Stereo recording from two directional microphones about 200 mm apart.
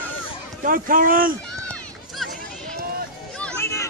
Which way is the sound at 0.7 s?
45° right (ahead or behind).